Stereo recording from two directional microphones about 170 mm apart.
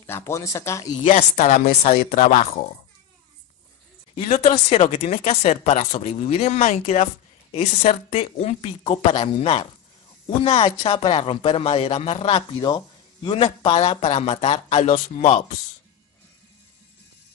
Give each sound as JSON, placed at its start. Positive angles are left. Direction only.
{"t": 0.0, "sound": "speech", "side_deg": 15}
{"t": 1.0, "sound": "speech", "side_deg": 40}
{"t": 2.0, "sound": "speech", "side_deg": 50}
{"t": 4.1, "sound": "speech", "side_deg": 35}